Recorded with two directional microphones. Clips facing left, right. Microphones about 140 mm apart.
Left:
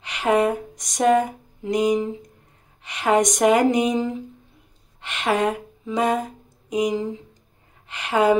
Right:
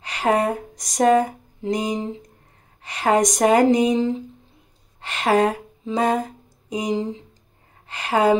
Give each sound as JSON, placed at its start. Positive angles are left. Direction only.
{"t": 0.0, "sound": "speech", "side_deg": -35}
{"t": 5.0, "sound": "a sound", "side_deg": -35}
{"t": 6.7, "sound": "a woman's voice", "side_deg": -30}